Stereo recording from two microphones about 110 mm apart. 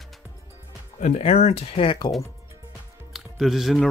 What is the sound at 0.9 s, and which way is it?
Speech, 90° left.